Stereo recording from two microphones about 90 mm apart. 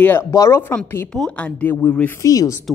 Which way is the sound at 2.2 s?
40° left (ahead or behind).